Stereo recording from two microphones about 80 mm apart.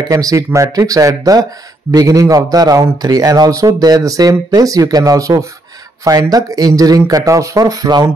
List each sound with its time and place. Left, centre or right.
0.1 s a man's voice: right